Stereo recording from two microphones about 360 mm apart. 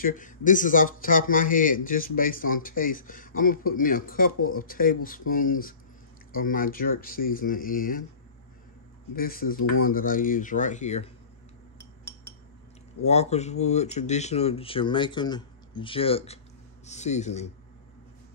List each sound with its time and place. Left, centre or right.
0.0 s speech: left
9.1 s speech: left
13.0 s speech: centre